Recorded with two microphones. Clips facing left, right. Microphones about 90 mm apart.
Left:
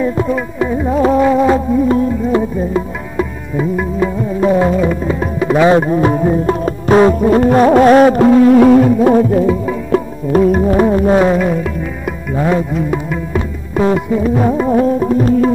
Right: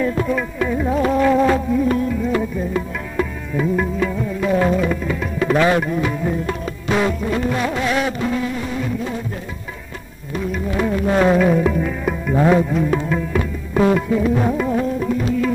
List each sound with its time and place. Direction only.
0.0 s music: 20° left (ahead or behind)
1.9 s music: 25° left (ahead or behind)
4.4 s music: 30° left (ahead or behind)
5.4 s music: 15° left (ahead or behind)
5.7 s music: 30° left (ahead or behind); by 9.5 s 70° left (ahead or behind)
10.3 s music: 45° left (ahead or behind)
11.1 s music: 5° left (ahead or behind)
14.5 s music: 25° left (ahead or behind)
14.8 s tabla: 40° left (ahead or behind)